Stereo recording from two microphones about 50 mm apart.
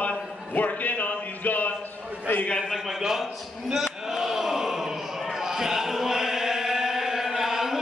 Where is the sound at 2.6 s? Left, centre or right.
Centre.